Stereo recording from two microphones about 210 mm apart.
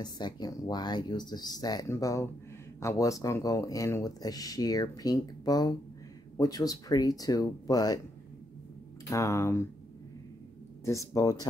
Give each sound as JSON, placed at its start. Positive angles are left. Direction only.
{"t": 0.0, "sound": "speech", "side_deg": 20}
{"t": 9.1, "sound": "speech", "side_deg": 15}
{"t": 10.9, "sound": "speech", "side_deg": 15}